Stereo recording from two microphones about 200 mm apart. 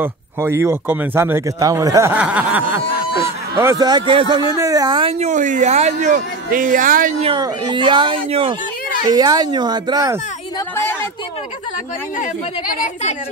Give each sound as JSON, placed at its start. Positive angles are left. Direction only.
{"t": 0.0, "sound": "speech", "side_deg": -15}
{"t": 5.2, "sound": "speech", "side_deg": -40}
{"t": 7.3, "sound": "speech", "side_deg": -20}
{"t": 12.6, "sound": "a woman's voice", "side_deg": 45}